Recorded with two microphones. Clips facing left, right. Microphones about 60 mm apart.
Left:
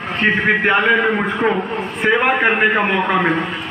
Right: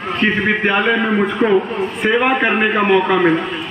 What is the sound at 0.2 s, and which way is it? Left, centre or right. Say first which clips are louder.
A man's voice: left 1 dB; left.